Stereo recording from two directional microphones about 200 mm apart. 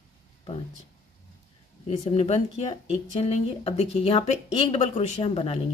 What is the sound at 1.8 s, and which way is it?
Speech, 30° left (ahead or behind).